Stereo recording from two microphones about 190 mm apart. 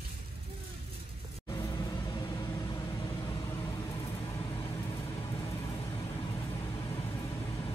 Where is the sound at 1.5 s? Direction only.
20° left (ahead or behind).